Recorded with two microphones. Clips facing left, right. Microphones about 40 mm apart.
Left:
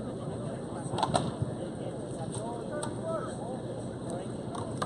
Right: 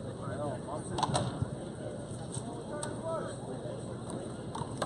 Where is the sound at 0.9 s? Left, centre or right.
Centre.